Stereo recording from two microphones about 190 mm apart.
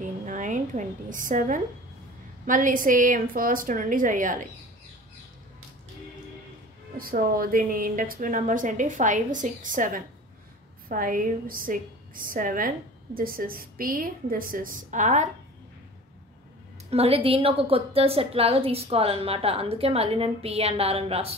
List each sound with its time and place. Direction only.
0.0 s a sound: 40° right (ahead or behind)
2.4 s a woman's voice: 45° right (ahead or behind)
7.0 s a woman's voice: 50° right (ahead or behind)
16.9 s a woman's voice: 30° right (ahead or behind)